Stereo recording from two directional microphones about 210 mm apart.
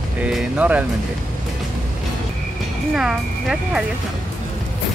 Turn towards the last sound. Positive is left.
turn(degrees=-5)  # may be behind; listen again after turning